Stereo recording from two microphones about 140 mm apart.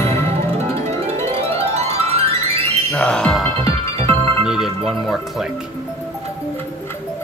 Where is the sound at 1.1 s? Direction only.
45° right (ahead or behind).